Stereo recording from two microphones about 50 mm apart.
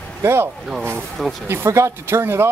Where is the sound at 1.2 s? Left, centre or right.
Centre.